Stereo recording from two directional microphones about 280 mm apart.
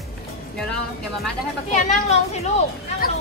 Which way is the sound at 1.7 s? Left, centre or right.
Left.